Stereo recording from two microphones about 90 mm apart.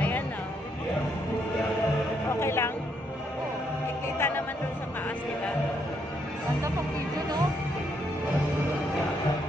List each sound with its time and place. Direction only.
2.2 s music: 30° left (ahead or behind)
4.2 s music: 25° left (ahead or behind)